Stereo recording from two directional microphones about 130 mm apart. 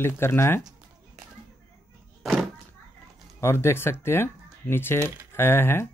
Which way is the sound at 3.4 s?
20° left (ahead or behind).